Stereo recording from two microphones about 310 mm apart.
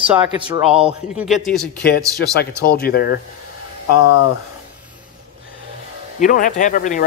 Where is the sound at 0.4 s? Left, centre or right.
Centre.